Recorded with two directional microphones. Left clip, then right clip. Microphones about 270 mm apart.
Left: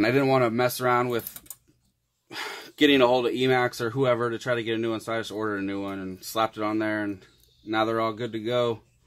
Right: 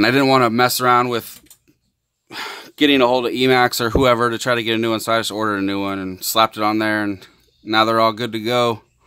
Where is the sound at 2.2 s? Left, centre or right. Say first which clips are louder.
Right 5 dB; right.